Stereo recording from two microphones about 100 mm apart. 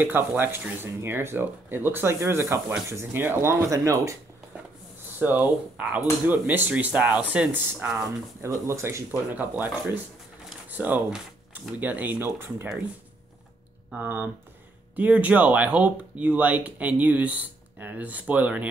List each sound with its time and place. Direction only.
0.0 s speech: 20° right (ahead or behind)
5.2 s speech: 15° right (ahead or behind)
8.4 s speech: 30° right (ahead or behind)
9.3 s speech: 20° right (ahead or behind)
10.7 s a sound: 20° right (ahead or behind)
11.5 s speech: 15° right (ahead or behind)
13.9 s speech: 20° right (ahead or behind)